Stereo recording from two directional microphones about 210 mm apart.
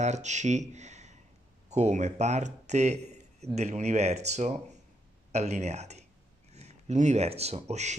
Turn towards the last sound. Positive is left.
turn(degrees=-35)  # may be behind; listen again after turning